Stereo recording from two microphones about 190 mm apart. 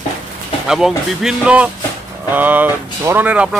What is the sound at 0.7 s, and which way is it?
Speech, 5° right (ahead or behind).